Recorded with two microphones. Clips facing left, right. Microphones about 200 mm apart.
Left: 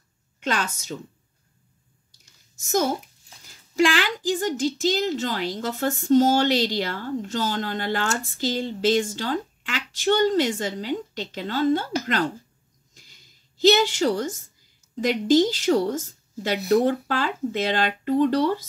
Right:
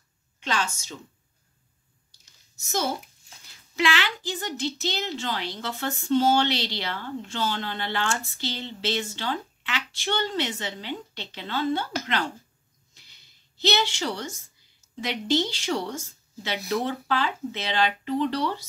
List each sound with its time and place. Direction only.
2.6 s a woman's voice: 45° left (ahead or behind)
12.9 s a sound: 45° left (ahead or behind)
15.0 s a woman's voice: 45° left (ahead or behind)